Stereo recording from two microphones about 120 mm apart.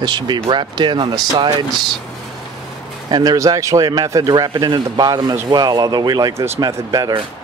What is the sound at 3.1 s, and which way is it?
Speech, 35° right (ahead or behind).